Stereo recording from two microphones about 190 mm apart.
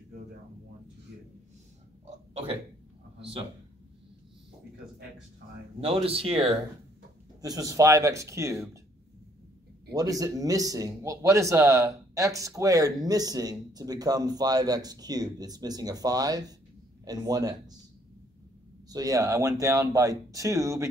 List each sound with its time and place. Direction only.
2.0 s a sound: 30° right (ahead or behind)
5.8 s speech: 30° right (ahead or behind)
7.4 s speech: 20° right (ahead or behind)
9.9 s speech: 20° right (ahead or behind)
18.9 s speech: 20° right (ahead or behind)